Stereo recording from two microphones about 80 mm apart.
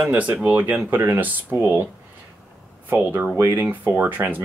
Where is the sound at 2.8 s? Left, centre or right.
Right.